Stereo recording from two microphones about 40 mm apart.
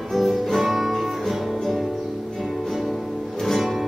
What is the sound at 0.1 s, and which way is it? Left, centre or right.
Music, centre.